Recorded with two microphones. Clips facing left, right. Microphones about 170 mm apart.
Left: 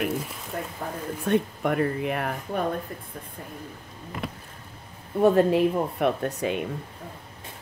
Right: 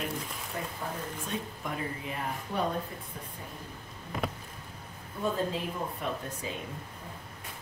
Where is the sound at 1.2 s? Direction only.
65° left (ahead or behind).